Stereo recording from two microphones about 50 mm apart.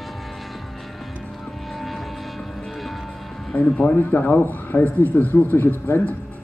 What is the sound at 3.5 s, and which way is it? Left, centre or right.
Speech, left.